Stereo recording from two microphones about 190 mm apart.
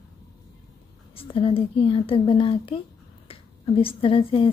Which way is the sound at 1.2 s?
30° left (ahead or behind).